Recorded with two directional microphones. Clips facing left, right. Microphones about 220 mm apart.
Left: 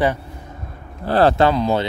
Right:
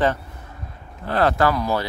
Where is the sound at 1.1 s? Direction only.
30° left (ahead or behind).